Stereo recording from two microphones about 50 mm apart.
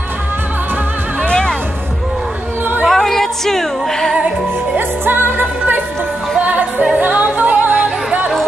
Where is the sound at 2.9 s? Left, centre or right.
Centre.